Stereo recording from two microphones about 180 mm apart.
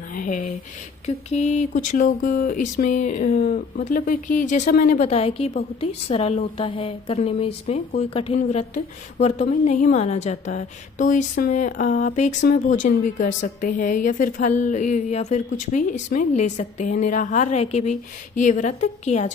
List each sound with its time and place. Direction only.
0.1 s a woman's voice: 50° left (ahead or behind)